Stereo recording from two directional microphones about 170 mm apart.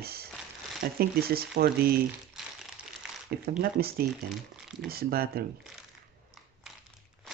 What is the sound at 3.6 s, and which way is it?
Speech, 65° right (ahead or behind).